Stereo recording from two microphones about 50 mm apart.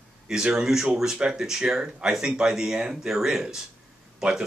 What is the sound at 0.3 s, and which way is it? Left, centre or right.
A man's voice, centre.